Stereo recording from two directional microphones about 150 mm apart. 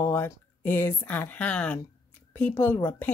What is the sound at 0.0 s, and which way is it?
Speech, 15° left (ahead or behind).